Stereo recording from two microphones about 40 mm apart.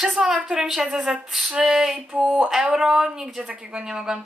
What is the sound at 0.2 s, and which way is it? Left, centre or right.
Speech, centre.